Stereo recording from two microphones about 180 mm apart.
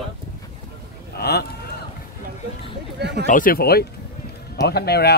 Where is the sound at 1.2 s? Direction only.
65° left (ahead or behind).